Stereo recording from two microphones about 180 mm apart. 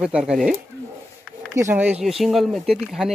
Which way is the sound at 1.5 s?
15° right (ahead or behind).